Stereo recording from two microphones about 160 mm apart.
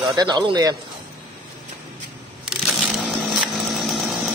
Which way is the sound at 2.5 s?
Centre (ahead or behind).